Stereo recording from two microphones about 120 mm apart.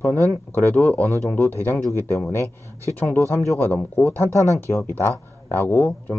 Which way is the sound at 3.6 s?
15° left (ahead or behind).